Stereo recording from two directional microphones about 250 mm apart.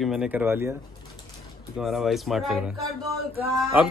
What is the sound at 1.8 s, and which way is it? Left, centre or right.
Speech, centre.